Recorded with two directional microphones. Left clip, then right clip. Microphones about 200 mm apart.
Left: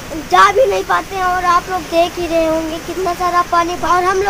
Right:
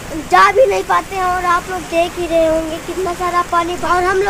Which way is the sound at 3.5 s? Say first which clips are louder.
Left 1 dB; 20° left (ahead or behind).